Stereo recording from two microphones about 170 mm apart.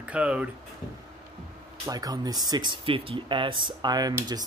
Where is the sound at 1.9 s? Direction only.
20° right (ahead or behind).